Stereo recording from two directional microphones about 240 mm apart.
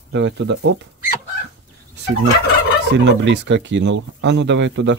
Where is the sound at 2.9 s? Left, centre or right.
Right.